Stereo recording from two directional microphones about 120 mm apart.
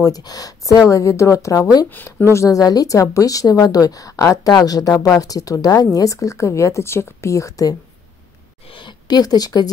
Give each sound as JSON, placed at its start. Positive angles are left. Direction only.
{"t": 0.0, "sound": "a woman's voice", "side_deg": 30}
{"t": 1.9, "sound": "speech", "side_deg": 15}
{"t": 2.3, "sound": "a woman's voice", "side_deg": 25}
{"t": 8.7, "sound": "a woman's voice", "side_deg": 40}